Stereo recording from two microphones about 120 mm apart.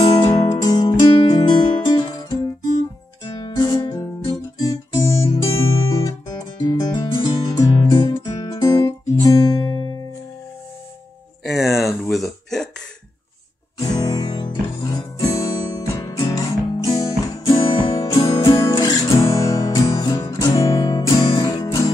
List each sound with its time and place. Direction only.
0.0 s music: 35° left (ahead or behind)
3.3 s guitar: 40° left (ahead or behind)
6.6 s music: 35° left (ahead or behind)
9.7 s music: 50° right (ahead or behind)
11.4 s hiccup: centre (ahead or behind)
13.7 s music: 30° left (ahead or behind)
17.5 s music: 50° left (ahead or behind); by 21.9 s 30° left (ahead or behind)